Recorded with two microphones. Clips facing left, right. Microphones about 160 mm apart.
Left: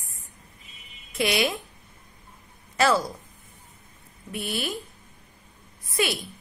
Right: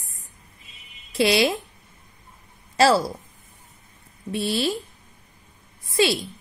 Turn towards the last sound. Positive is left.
turn(degrees=-30)  # may be behind; listen again after turning